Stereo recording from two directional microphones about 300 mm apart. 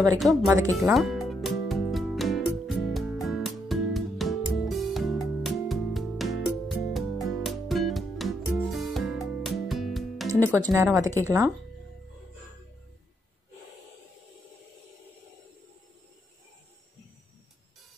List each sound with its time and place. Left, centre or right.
0.2 s speech: centre
0.7 s music: centre
10.7 s speech: centre